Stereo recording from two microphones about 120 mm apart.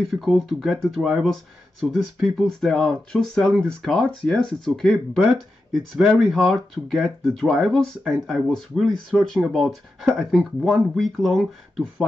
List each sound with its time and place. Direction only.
0.0 s speech: centre (ahead or behind)